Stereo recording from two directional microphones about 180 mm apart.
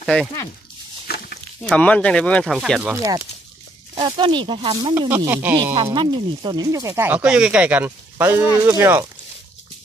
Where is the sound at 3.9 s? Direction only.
25° right (ahead or behind).